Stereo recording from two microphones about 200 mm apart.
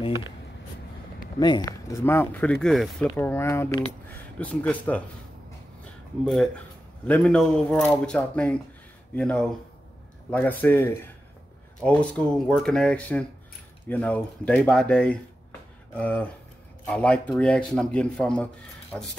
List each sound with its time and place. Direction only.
0.0 s a sound: 25° left (ahead or behind)
1.4 s speech: 20° left (ahead or behind)
6.2 s speech: centre (ahead or behind)
10.6 s speech: 10° left (ahead or behind)